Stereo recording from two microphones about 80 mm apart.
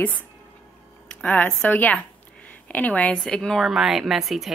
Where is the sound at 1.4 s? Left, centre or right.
Left.